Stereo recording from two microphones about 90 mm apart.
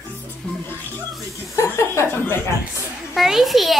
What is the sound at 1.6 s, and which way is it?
Chuckle, 30° left (ahead or behind).